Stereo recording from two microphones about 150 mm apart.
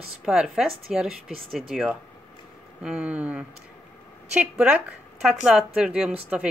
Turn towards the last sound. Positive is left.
turn(degrees=-5)  # may be behind; listen again after turning